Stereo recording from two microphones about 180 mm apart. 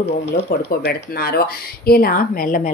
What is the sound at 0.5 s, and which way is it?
Speech, 55° left (ahead or behind).